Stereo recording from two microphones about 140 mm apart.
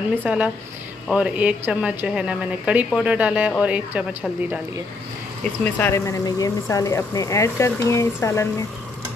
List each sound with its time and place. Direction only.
0.2 s speech: 10° right (ahead or behind)
5.4 s speech: 15° left (ahead or behind)